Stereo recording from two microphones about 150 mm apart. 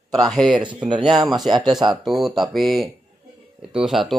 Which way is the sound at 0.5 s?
30° right (ahead or behind).